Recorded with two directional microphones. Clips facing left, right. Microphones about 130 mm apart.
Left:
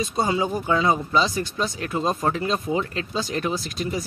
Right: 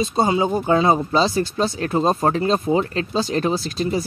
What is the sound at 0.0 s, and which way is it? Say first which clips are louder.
Speech: right 4 dB; 25° right (ahead or behind).